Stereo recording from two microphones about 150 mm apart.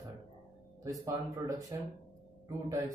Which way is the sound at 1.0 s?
20° right (ahead or behind).